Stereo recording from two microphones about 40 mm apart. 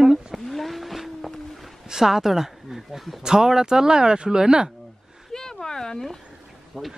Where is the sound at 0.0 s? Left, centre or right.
Centre.